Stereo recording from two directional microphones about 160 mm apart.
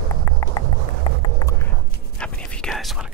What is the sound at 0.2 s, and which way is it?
Run, 20° left (ahead or behind).